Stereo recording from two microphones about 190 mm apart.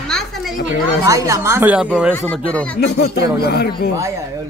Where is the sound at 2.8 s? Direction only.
60° left (ahead or behind).